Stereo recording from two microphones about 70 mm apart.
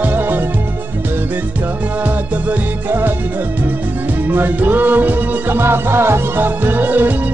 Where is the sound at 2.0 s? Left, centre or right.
Right.